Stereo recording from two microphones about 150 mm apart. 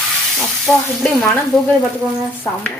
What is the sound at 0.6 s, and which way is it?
Speech, 5° left (ahead or behind).